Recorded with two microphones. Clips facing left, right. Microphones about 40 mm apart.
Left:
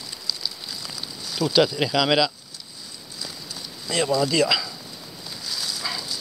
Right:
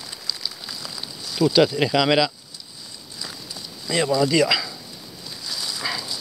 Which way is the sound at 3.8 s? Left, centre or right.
Centre.